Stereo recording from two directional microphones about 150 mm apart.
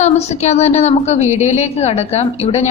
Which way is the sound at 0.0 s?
50° left (ahead or behind).